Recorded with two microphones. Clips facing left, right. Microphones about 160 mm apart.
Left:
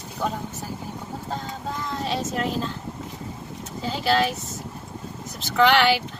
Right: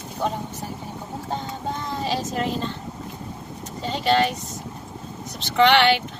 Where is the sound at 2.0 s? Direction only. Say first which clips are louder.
Right 1 dB; centre (ahead or behind).